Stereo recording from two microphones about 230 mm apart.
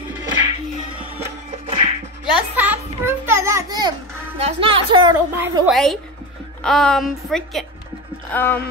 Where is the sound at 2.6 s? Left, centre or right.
Centre.